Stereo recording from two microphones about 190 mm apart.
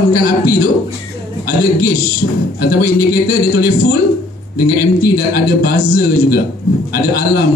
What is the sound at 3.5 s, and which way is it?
Speech, 50° left (ahead or behind).